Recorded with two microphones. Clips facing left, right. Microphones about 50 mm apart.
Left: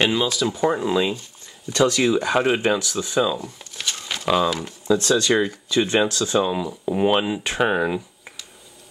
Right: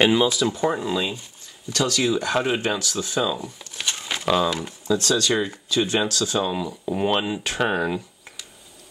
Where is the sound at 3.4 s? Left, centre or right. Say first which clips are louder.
Even; centre.